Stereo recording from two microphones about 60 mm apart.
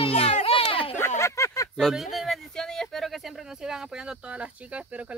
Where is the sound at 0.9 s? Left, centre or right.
Left.